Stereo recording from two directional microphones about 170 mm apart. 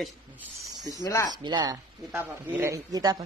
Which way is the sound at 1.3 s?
25° right (ahead or behind).